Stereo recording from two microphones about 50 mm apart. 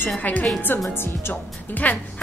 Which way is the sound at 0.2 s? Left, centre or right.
Left.